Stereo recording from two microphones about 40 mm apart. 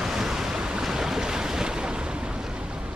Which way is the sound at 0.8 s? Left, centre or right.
Centre.